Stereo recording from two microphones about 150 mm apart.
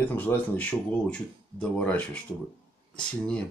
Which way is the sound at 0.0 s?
10° left (ahead or behind).